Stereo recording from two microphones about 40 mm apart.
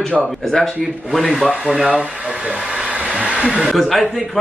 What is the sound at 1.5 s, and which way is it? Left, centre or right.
Speech, right.